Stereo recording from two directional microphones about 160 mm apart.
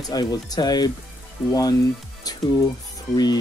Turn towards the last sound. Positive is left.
turn(degrees=25)  # may be behind; listen again after turning